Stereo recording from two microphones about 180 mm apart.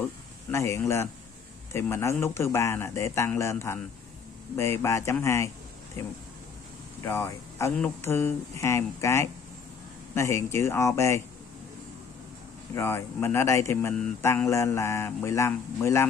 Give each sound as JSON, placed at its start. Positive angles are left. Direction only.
{"t": 0.5, "sound": "speech", "side_deg": 15}
{"t": 7.0, "sound": "speech", "side_deg": 15}
{"t": 12.7, "sound": "speech", "side_deg": 15}